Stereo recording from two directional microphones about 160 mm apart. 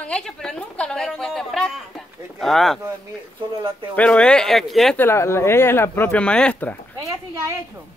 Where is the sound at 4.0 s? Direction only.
5° left (ahead or behind).